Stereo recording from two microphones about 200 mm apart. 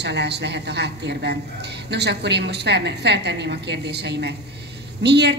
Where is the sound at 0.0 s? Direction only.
55° right (ahead or behind).